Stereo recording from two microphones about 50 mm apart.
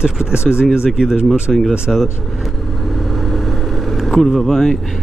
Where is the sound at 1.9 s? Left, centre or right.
Centre.